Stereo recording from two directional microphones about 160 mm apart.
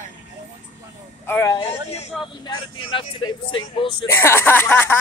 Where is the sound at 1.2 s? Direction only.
15° left (ahead or behind).